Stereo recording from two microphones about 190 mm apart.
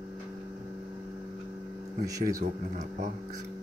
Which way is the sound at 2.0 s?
20° right (ahead or behind).